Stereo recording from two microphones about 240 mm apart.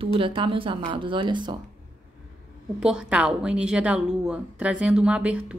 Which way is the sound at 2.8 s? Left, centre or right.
Centre.